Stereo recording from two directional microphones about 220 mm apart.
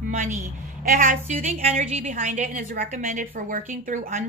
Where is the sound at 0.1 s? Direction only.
35° right (ahead or behind).